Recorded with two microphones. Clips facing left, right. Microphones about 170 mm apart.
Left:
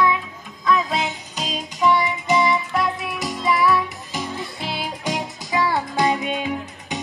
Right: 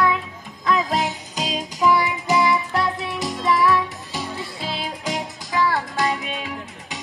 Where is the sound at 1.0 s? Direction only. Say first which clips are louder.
Right 2 dB; 40° right (ahead or behind).